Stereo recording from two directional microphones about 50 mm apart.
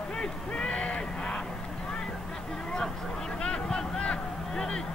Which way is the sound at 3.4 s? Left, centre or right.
Centre.